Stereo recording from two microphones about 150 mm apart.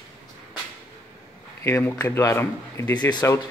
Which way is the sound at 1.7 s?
15° left (ahead or behind).